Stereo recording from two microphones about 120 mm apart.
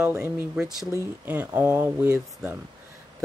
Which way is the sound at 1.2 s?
15° right (ahead or behind).